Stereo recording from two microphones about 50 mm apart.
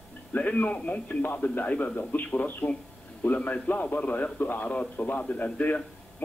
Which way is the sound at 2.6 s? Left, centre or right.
Left.